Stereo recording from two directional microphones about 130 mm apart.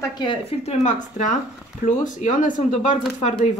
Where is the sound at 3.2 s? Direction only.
60° left (ahead or behind).